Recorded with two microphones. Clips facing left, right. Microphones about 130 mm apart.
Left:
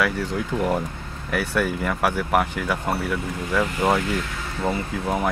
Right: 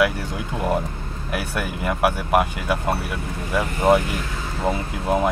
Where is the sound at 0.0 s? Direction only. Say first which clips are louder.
Right 2 dB; 15° right (ahead or behind).